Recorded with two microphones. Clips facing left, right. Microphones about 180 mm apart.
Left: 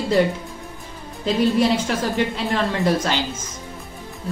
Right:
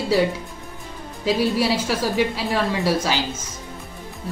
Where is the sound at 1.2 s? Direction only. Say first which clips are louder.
Left 2 dB; 5° right (ahead or behind).